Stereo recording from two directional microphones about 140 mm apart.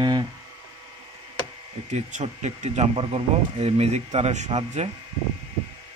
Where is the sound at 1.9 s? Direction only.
60° right (ahead or behind).